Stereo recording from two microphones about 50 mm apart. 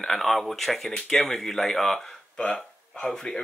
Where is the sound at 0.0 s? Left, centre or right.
Centre.